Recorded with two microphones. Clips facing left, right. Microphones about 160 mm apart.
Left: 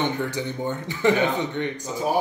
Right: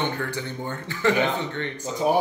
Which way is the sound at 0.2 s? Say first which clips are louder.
Left 3 dB; 15° left (ahead or behind).